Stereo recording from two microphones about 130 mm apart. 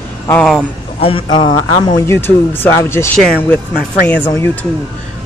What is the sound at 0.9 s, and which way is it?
Speech, 45° left (ahead or behind).